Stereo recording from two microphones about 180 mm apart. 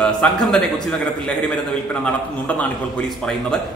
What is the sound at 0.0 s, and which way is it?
Speech, 5° left (ahead or behind).